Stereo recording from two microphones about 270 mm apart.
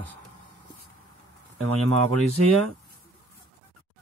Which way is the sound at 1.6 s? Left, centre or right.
Right.